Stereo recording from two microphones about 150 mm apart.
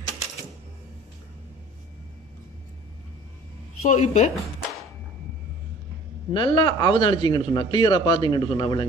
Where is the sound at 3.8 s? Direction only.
50° left (ahead or behind).